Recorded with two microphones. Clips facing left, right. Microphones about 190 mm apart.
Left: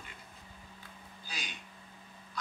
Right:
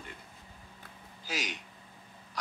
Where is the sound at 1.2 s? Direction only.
90° right.